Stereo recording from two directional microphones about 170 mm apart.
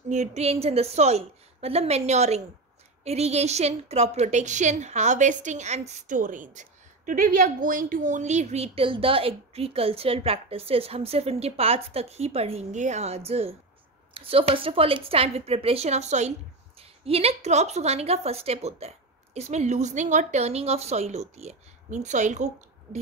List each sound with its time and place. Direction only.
0.1 s a woman's voice: 45° right (ahead or behind)